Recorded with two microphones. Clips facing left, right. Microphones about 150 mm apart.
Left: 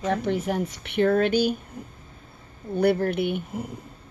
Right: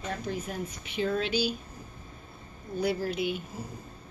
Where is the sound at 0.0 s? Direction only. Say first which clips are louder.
Left 9 dB; 70° left (ahead or behind).